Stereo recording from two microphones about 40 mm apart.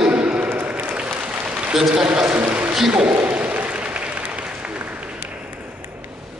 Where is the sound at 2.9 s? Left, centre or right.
Right.